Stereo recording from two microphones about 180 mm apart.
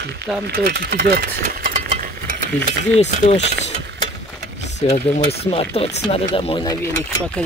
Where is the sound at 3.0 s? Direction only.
40° left (ahead or behind).